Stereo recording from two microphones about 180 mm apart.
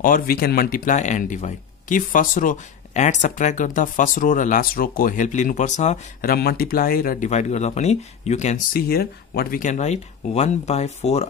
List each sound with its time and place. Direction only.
0.0 s speech: 55° left (ahead or behind)
6.3 s speech: 55° left (ahead or behind)
7.2 s speech: 40° left (ahead or behind)
8.7 s speech: 60° left (ahead or behind); by 11.2 s 40° left (ahead or behind)